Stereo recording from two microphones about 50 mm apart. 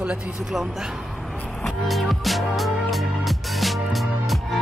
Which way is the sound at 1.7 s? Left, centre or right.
Centre.